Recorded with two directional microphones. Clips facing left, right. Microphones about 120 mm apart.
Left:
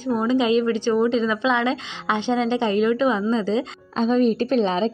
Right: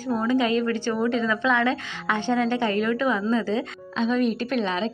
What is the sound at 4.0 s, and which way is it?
Speech, 35° left (ahead or behind).